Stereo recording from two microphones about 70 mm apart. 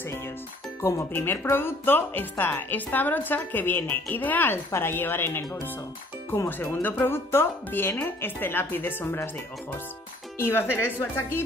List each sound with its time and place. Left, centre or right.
1.1 s speech: left
6.4 s speech: left